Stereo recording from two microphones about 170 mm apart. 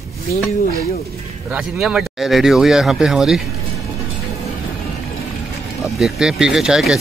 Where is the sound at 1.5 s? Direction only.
5° right (ahead or behind).